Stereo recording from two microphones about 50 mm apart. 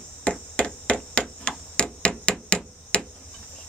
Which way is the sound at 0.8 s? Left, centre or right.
Left.